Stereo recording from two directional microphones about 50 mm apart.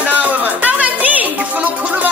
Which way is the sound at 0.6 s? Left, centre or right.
Right.